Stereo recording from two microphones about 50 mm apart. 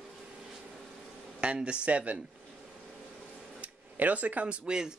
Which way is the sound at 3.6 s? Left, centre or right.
Right.